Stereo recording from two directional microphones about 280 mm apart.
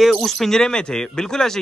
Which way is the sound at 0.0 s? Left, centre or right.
Centre.